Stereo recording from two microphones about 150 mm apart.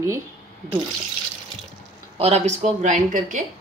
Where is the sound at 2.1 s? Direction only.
45° right (ahead or behind).